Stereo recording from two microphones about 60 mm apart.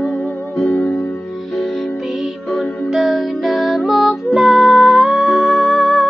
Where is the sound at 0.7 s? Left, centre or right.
Left.